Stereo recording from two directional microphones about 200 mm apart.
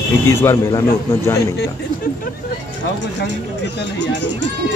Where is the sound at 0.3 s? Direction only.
15° left (ahead or behind).